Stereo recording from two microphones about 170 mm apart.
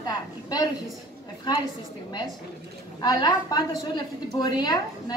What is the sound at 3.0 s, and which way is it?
A woman's voice, 25° left (ahead or behind).